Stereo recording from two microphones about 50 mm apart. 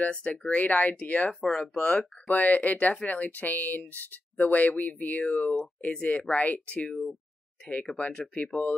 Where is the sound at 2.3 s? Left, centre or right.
Left.